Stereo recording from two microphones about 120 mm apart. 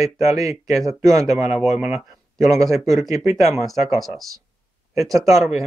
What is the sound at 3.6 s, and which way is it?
Speech, centre (ahead or behind).